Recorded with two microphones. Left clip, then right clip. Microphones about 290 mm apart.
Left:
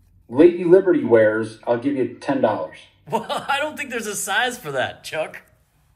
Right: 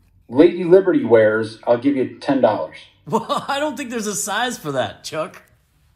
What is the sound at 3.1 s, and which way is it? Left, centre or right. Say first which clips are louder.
A man's voice: right 2 dB; centre.